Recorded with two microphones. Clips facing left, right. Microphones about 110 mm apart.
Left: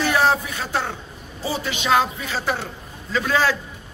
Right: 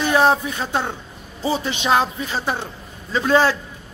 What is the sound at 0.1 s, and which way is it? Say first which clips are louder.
A man's voice: right 6 dB; 20° right (ahead or behind).